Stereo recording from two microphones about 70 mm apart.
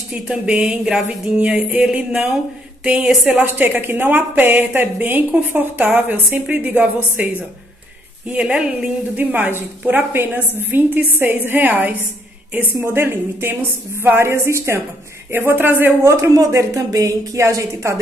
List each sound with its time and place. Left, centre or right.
0.1 s a sound: centre
3.3 s a woman's voice: right
12.8 s a woman's voice: right
16.5 s speech: right
17.4 s a woman's voice: right